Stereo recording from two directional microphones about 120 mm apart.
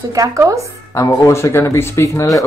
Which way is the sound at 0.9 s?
25° left (ahead or behind).